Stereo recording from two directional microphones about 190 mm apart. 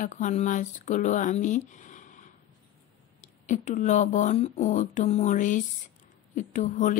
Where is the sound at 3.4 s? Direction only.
40° left (ahead or behind).